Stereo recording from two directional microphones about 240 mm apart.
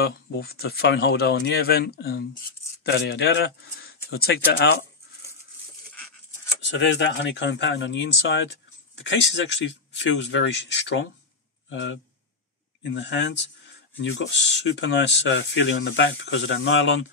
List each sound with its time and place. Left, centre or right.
0.0 s speech: left
6.6 s speech: left